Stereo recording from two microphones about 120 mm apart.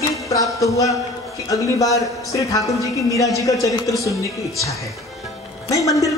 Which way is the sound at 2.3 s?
30° left (ahead or behind).